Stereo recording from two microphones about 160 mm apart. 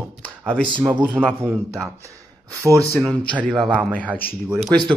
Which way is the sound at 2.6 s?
20° right (ahead or behind).